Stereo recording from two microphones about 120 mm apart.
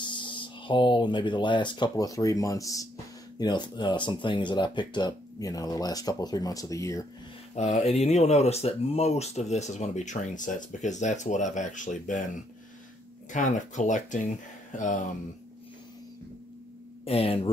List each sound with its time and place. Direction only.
0.1 s speech: 40° left (ahead or behind)
7.5 s speech: 65° left (ahead or behind); by 12.2 s 90° left
13.3 s speech: 90° left
17.0 s speech: 55° left (ahead or behind)